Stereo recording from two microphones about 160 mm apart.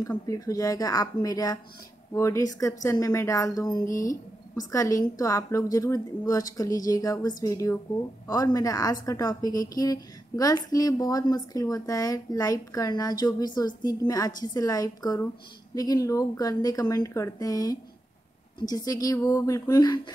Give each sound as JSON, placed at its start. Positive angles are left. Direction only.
{"t": 0.0, "sound": "a woman's voice", "side_deg": 20}